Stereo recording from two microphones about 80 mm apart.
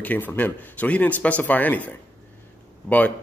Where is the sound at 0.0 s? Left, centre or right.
Left.